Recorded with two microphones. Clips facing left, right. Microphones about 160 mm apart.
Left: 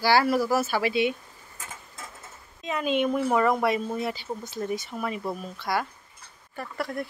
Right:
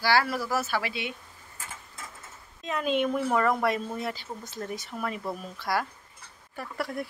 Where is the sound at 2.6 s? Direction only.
Centre (ahead or behind).